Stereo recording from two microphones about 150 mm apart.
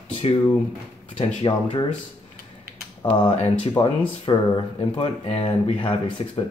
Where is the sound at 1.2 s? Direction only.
35° left (ahead or behind).